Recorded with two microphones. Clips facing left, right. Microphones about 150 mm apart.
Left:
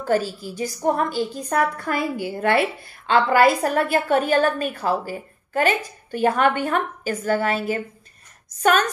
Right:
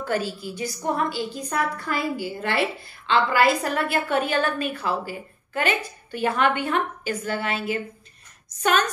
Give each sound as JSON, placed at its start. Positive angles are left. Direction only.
{"t": 0.0, "sound": "a woman's voice", "side_deg": 40}